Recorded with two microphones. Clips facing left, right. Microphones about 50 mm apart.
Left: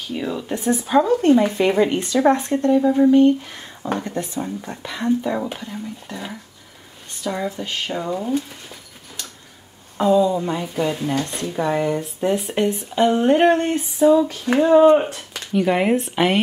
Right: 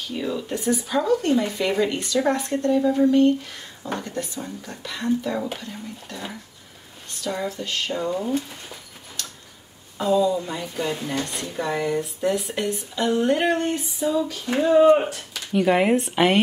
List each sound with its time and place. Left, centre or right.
0.1 s speech: centre
0.5 s speech: left
2.7 s speech: centre
3.5 s speech: left; by 8.7 s centre
9.9 s speech: left
15.5 s speech: centre